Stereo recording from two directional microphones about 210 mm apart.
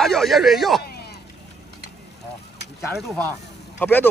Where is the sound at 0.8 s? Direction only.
50° left (ahead or behind).